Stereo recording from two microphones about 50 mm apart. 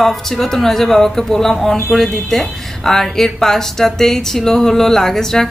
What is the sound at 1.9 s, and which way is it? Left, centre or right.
Speech, centre.